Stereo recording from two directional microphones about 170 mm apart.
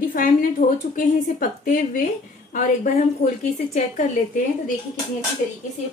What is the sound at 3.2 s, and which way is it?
Speech, 45° left (ahead or behind).